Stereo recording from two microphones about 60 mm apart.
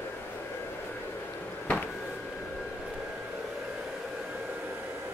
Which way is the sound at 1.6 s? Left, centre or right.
Left.